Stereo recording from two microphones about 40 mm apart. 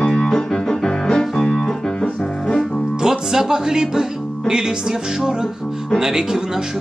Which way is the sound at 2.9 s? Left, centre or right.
Centre.